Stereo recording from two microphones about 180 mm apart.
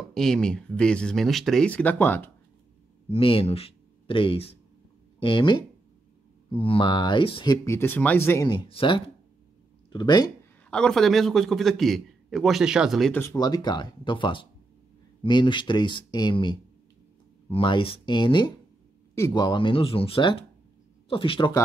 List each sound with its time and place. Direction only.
0.1 s a man's voice: centre (ahead or behind)
3.1 s speech: 30° left (ahead or behind)
6.6 s speech: 30° left (ahead or behind)
7.6 s speech: 15° left (ahead or behind)
10.7 s a man's voice: 5° left (ahead or behind)
13.1 s speech: 15° left (ahead or behind)